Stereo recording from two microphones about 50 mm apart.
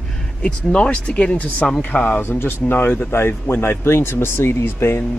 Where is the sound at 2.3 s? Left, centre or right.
Left.